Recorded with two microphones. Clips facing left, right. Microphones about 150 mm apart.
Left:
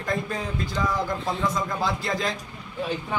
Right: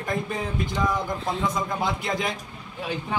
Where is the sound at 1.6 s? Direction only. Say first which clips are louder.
Even; 20° right (ahead or behind).